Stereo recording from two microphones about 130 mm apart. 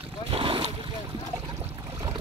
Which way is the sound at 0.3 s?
45° right (ahead or behind).